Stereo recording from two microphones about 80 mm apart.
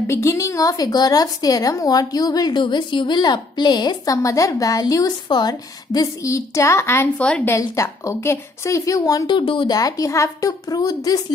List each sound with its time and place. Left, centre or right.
0.0 s a woman's voice: left
2.5 s a woman's voice: left
3.2 s a woman's voice: left
7.2 s a woman's voice: centre
7.4 s a woman's voice: left
9.3 s a woman's voice: left
9.7 s a woman's voice: left